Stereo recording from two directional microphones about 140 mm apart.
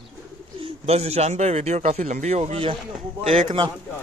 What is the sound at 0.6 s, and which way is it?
Speech, 50° right (ahead or behind).